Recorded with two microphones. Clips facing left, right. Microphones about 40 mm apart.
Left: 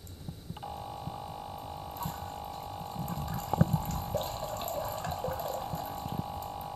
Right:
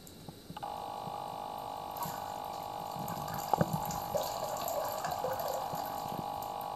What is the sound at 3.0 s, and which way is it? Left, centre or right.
Water, left.